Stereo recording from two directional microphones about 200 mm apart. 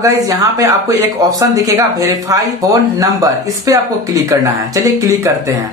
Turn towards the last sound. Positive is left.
turn(degrees=-15)  # may be behind; listen again after turning